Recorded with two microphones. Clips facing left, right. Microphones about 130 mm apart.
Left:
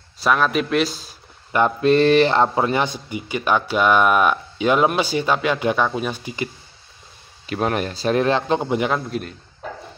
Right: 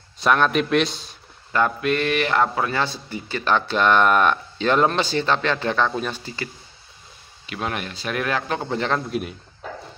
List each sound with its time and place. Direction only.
0.2 s a man's voice: centre (ahead or behind)
1.8 s a man's voice: 30° left (ahead or behind); by 6.5 s 15° left (ahead or behind)
7.4 s speech: 40° left (ahead or behind); by 9.0 s 10° left (ahead or behind)